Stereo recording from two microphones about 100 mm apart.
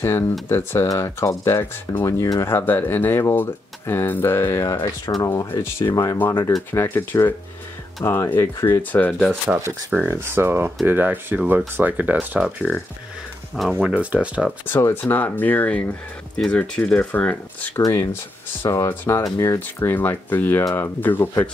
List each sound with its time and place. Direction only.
0.0 s speech: 25° left (ahead or behind)
8.9 s speech: 10° left (ahead or behind)
9.8 s speech: 20° right (ahead or behind)
13.5 s speech: 5° right (ahead or behind)
14.7 s speech: 25° left (ahead or behind)